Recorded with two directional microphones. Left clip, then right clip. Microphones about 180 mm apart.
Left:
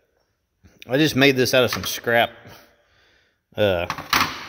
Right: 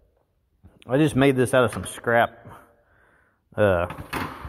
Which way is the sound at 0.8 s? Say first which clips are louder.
Left 3 dB; 15° left (ahead or behind).